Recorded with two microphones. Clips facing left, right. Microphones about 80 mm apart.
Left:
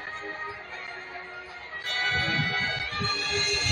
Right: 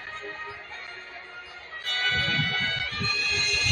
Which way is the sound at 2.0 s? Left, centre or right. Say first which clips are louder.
Even; left.